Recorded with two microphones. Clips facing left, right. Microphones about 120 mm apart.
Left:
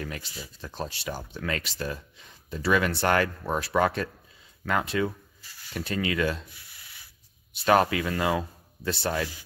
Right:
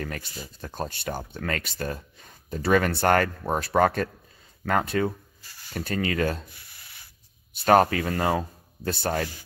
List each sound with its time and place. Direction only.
0.0 s speech: 45° right (ahead or behind)
7.5 s speech: 45° right (ahead or behind)